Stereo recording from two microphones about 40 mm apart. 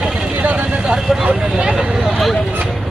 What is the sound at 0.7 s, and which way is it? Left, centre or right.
Vehicle, right.